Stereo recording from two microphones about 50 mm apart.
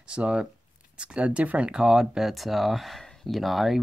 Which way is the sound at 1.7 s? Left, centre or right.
Centre.